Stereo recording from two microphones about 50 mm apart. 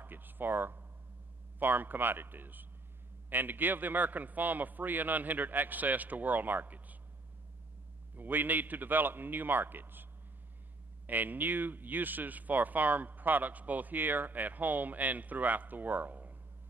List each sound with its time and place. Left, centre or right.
0.0 s a sound: right
1.6 s speech: right
8.2 s speech: right
11.1 s speech: right